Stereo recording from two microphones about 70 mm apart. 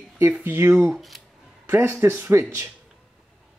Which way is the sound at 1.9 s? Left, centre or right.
Right.